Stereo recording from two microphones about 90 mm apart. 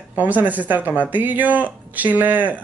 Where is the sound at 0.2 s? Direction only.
20° right (ahead or behind).